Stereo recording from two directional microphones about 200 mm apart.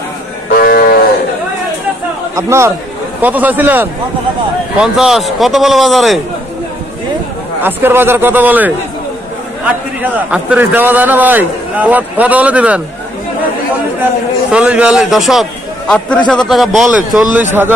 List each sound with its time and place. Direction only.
0.5 s sheep: 45° left (ahead or behind)
2.3 s a man's voice: 15° right (ahead or behind)
7.6 s a man's voice: 10° right (ahead or behind)
10.3 s a man's voice: 5° right (ahead or behind)
14.5 s a man's voice: 5° right (ahead or behind)